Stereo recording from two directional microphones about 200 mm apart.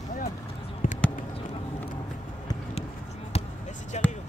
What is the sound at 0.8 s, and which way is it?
Basketball bounce, 45° left (ahead or behind).